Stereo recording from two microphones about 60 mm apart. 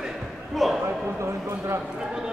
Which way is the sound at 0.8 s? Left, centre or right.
Right.